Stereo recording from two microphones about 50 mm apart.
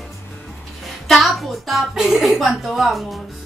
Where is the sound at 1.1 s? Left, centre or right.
Centre.